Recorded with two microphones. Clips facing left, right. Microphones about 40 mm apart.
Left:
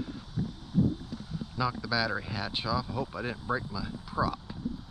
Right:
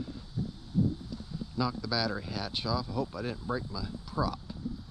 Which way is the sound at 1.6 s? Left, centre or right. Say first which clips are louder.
Left 1 dB; left.